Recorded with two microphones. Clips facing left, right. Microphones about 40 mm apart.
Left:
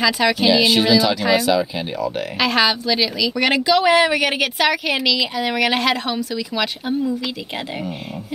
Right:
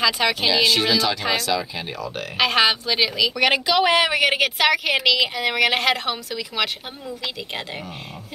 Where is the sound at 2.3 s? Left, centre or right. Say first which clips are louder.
Even; centre.